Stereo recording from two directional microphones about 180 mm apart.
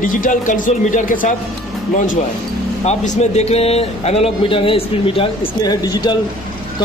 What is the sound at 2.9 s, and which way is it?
A man's voice, 40° left (ahead or behind).